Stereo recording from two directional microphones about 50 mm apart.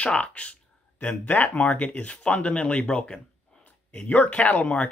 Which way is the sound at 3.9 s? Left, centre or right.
Left.